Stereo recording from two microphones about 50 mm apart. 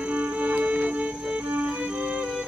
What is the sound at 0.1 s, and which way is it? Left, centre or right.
Music, right.